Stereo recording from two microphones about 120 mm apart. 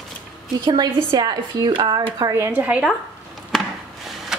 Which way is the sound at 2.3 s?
15° right (ahead or behind).